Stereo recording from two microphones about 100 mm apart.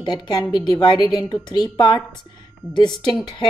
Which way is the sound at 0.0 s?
45° left (ahead or behind).